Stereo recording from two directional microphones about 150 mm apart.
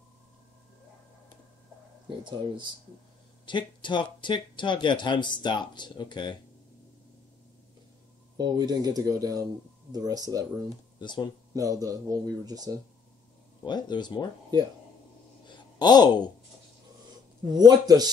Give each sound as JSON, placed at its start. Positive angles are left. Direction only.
{"t": 2.0, "sound": "speech", "side_deg": -30}
{"t": 3.4, "sound": "speech", "side_deg": 30}
{"t": 8.4, "sound": "speech", "side_deg": -25}
{"t": 11.0, "sound": "speech", "side_deg": 30}
{"t": 11.5, "sound": "speech", "side_deg": -25}
{"t": 13.7, "sound": "speech", "side_deg": 30}
{"t": 15.4, "sound": "a sound", "side_deg": 30}
{"t": 17.5, "sound": "speech", "side_deg": -25}